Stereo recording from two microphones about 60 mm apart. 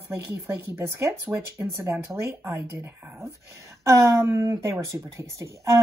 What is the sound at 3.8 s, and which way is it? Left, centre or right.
Speech, right.